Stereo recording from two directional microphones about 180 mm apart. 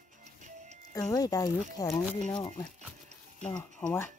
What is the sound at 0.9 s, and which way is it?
Speech, 20° left (ahead or behind).